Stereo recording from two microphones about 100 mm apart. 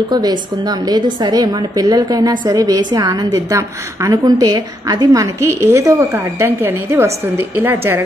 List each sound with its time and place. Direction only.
0.1 s a woman's voice: 40° right (ahead or behind); by 8.0 s 20° right (ahead or behind)